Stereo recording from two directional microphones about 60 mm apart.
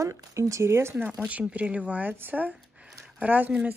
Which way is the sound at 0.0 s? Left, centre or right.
Right.